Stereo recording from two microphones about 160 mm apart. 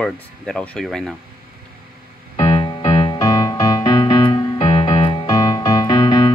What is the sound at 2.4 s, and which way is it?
Music, 30° left (ahead or behind).